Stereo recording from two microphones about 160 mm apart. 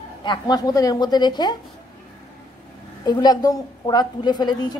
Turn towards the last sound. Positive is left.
turn(degrees=25)  # may be behind; listen again after turning